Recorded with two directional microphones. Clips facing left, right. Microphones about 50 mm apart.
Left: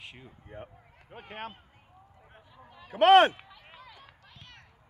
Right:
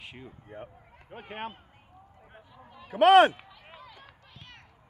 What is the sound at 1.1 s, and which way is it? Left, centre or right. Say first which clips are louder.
Speech: right 3 dB; centre.